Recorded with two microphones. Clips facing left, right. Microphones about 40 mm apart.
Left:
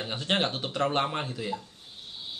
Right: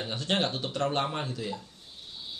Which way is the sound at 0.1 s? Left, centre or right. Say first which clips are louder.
Left 1 dB; left.